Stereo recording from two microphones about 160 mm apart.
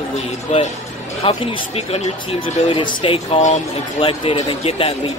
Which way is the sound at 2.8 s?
35° left (ahead or behind).